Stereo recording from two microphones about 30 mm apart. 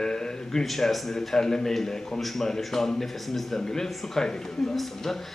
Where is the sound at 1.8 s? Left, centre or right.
Centre.